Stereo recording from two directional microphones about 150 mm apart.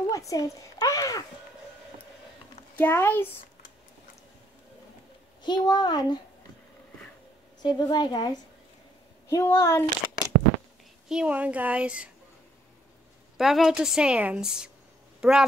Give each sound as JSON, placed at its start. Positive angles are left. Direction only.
{"t": 0.1, "sound": "a sound", "side_deg": 20}
{"t": 2.8, "sound": "a child's voice", "side_deg": 10}
{"t": 5.4, "sound": "a woman's voice", "side_deg": 30}
{"t": 7.6, "sound": "a woman's voice", "side_deg": 30}
{"t": 9.6, "sound": "speech", "side_deg": 20}
{"t": 11.1, "sound": "a woman's voice", "side_deg": -5}
{"t": 13.4, "sound": "a woman's voice", "side_deg": 0}